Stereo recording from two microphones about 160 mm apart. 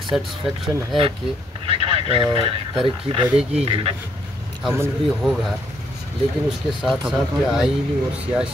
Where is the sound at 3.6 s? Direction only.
35° right (ahead or behind).